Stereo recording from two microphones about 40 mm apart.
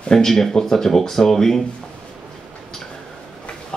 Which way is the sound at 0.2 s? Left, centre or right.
Centre.